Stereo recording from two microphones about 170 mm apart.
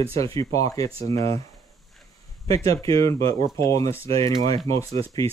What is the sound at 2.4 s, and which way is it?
Speech, 20° left (ahead or behind).